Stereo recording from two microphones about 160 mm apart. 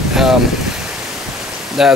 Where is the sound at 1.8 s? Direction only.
5° right (ahead or behind).